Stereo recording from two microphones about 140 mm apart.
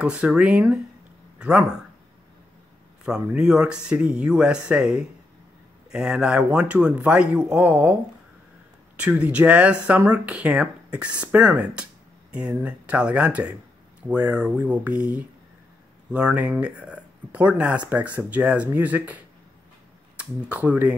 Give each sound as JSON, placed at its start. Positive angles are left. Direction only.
{"t": 0.0, "sound": "speech", "side_deg": -10}
{"t": 3.1, "sound": "speech", "side_deg": -5}